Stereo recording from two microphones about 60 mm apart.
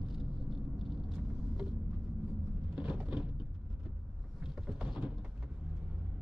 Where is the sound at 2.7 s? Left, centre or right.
Centre.